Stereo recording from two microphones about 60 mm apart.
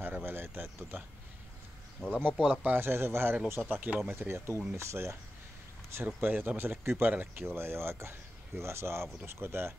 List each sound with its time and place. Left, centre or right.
0.0 s a sound: right
2.0 s speech: centre
2.6 s speech: right
3.6 s speech: right
4.1 s speech: right
6.0 s speech: right